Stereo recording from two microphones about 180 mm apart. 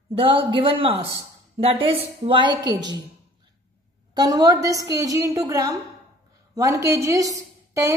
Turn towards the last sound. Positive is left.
turn(degrees=-15)  # may be behind; listen again after turning